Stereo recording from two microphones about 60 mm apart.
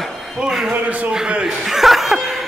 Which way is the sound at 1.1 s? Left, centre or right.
Centre.